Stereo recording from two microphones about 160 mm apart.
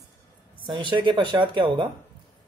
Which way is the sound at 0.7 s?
30° right (ahead or behind).